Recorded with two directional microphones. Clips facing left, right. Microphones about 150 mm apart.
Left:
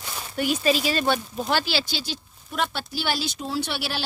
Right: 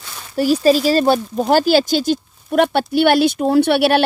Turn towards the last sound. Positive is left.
turn(degrees=-60)  # may be behind; listen again after turning